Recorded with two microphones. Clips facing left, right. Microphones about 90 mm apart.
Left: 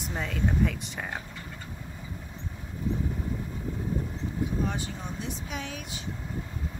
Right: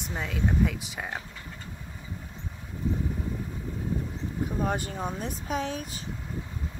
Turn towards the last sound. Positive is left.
turn(degrees=-35)  # may be behind; listen again after turning